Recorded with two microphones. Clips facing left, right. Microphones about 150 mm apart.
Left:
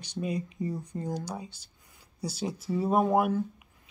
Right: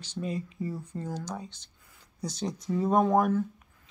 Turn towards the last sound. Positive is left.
turn(degrees=10)  # may be behind; listen again after turning